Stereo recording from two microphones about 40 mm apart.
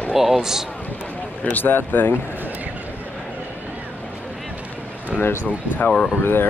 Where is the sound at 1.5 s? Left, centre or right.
Left.